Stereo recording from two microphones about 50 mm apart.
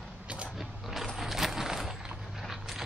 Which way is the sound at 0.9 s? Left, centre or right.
Centre.